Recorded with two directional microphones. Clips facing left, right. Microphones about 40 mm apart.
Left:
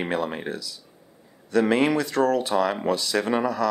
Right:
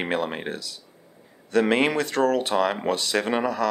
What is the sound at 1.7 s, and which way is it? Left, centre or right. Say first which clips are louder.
Speech: left 1 dB; right.